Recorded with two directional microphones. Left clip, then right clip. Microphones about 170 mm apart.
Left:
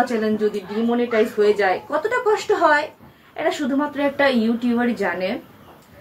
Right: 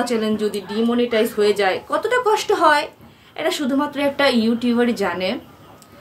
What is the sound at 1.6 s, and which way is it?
Speech, 20° right (ahead or behind).